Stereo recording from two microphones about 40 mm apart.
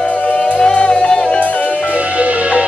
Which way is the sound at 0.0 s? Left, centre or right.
Left.